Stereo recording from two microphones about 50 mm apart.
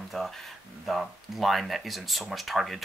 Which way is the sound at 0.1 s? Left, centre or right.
Centre.